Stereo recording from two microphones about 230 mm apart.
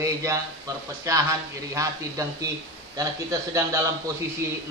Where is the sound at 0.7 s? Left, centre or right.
Centre.